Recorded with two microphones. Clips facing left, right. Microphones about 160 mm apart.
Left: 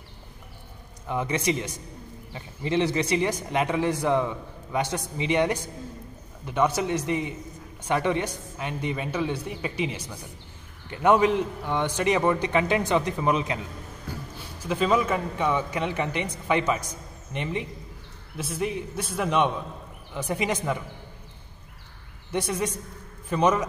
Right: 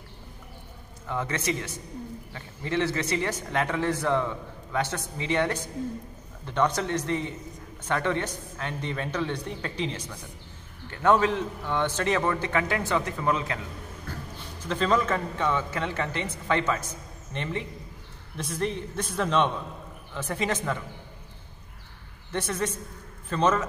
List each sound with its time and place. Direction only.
1.0 s a man's voice: 15° left (ahead or behind)
14.1 s music: 15° left (ahead or behind)
14.6 s a man's voice: 10° left (ahead or behind)
22.3 s a man's voice: 15° left (ahead or behind)